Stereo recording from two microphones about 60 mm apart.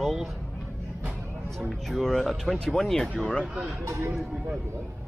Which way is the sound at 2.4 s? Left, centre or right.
Centre.